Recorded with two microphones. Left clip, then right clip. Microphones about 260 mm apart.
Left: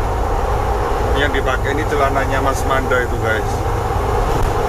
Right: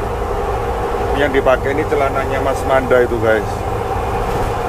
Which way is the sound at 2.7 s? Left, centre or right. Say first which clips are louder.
Right 4 dB; centre.